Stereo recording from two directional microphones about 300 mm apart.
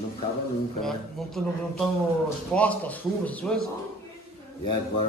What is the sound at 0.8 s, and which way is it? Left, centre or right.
Speech, centre.